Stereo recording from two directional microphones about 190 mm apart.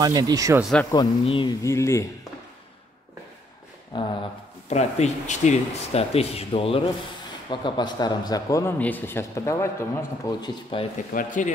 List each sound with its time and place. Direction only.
0.0 s speech: 20° right (ahead or behind)
0.6 s speech: centre (ahead or behind)
0.9 s speech: 25° left (ahead or behind)
3.9 s speech: 25° left (ahead or behind)
4.6 s speech: 35° left (ahead or behind); by 10.5 s 15° left (ahead or behind)
10.7 s speech: 25° left (ahead or behind)
11.1 s speech: 45° left (ahead or behind)